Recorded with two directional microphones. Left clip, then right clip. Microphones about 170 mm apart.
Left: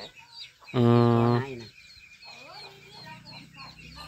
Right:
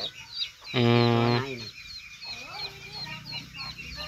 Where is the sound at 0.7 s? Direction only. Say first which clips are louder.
Left 1 dB; 35° left (ahead or behind).